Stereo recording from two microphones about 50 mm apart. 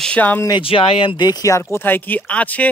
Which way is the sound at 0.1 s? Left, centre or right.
Left.